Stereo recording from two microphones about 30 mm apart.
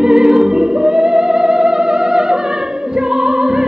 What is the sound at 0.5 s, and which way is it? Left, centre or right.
Music, right.